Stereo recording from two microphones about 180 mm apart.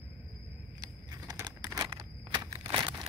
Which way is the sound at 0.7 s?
20° right (ahead or behind).